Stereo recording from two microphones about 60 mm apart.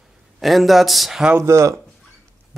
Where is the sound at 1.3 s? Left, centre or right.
Right.